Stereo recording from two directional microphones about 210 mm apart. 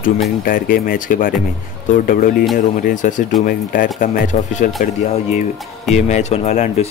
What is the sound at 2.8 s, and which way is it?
Speech, 40° left (ahead or behind).